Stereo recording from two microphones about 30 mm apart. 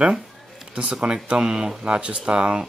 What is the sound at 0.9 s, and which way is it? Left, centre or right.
Speech, right.